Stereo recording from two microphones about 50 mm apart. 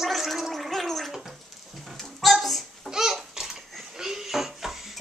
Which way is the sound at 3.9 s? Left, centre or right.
Centre.